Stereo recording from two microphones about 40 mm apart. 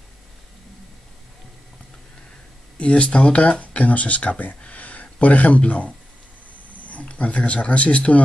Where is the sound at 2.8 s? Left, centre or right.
Left.